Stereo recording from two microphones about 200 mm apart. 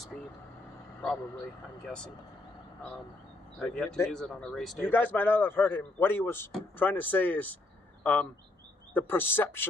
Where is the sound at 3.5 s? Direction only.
5° left (ahead or behind).